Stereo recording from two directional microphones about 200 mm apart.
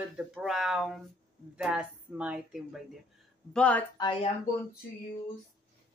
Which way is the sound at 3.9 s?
25° left (ahead or behind).